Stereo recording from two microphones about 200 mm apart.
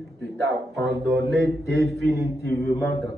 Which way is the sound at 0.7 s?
60° right (ahead or behind).